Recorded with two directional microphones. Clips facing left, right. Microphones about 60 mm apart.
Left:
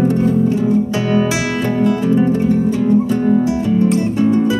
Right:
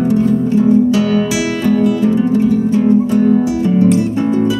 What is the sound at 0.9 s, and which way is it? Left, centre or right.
Music, left.